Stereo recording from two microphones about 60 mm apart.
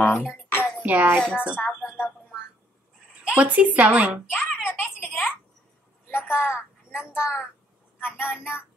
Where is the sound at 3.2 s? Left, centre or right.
Right.